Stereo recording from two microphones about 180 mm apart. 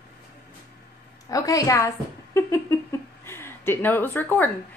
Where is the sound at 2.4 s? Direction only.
15° left (ahead or behind).